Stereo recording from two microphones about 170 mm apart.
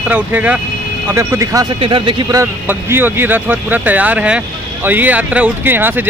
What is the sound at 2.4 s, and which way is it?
Speech, 15° right (ahead or behind).